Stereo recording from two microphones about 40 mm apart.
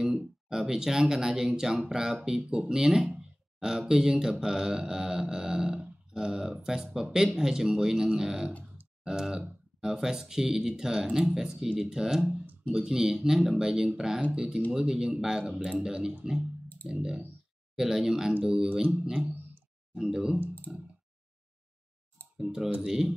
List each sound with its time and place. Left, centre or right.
0.0 s mantra: centre
9.0 s speech: centre
10.8 s mantra: centre
16.8 s speech: right
17.7 s mantra: centre
18.4 s speech: centre
19.2 s a sound: right
20.0 s speech: right
22.4 s mantra: centre